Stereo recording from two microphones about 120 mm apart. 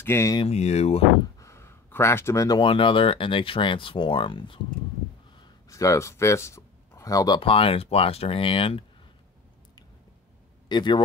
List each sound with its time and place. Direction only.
0.0 s speech: 25° left (ahead or behind)
0.5 s speech: 65° left (ahead or behind)
1.4 s a sound: 25° left (ahead or behind)
2.6 s speech: 45° left (ahead or behind)
5.7 s speech: 25° left (ahead or behind)
7.3 s speech: 50° left (ahead or behind)
10.7 s a man's voice: 40° left (ahead or behind)